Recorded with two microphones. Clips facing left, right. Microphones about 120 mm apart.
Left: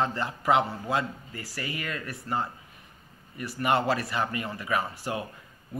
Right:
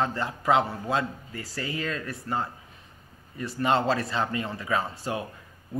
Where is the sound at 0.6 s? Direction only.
15° right (ahead or behind).